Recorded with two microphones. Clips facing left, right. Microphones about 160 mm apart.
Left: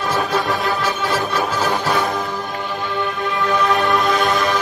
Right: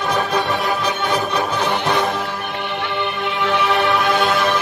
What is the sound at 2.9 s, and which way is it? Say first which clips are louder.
Music: left 2 dB; 70° right (ahead or behind).